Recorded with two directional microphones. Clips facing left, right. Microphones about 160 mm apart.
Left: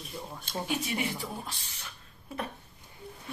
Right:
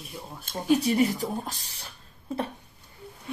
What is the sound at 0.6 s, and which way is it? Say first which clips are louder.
Speech: right 11 dB; 35° right (ahead or behind).